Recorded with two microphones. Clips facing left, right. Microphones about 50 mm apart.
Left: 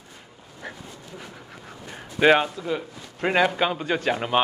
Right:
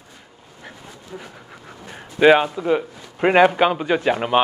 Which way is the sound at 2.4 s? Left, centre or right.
Right.